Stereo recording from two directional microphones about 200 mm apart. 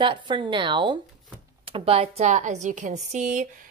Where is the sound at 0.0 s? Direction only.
25° right (ahead or behind).